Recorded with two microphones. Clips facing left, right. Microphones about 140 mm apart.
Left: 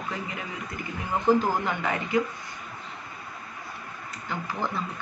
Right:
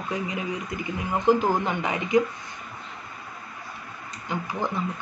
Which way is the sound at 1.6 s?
15° right (ahead or behind).